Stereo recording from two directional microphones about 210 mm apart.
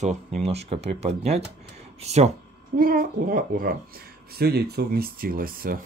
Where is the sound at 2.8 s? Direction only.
45° right (ahead or behind).